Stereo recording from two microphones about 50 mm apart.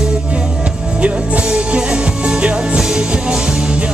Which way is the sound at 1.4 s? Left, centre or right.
Centre.